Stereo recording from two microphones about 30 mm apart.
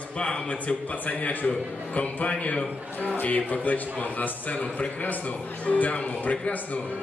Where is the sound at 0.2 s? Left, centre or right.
Left.